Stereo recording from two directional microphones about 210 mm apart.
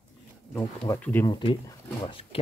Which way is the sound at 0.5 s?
10° left (ahead or behind).